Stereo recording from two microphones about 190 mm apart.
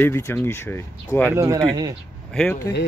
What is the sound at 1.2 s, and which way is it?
Speech, 15° right (ahead or behind).